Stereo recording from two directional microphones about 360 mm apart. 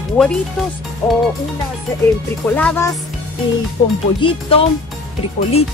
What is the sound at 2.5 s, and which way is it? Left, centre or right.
Speech, centre.